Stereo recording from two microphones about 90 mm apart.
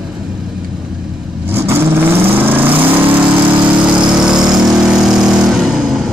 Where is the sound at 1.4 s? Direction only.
25° right (ahead or behind); by 6.0 s 5° right (ahead or behind).